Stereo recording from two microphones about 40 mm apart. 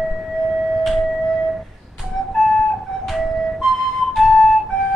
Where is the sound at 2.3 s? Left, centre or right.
Centre.